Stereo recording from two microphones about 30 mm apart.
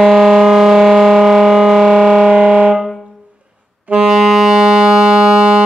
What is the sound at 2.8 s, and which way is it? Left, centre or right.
Music, centre.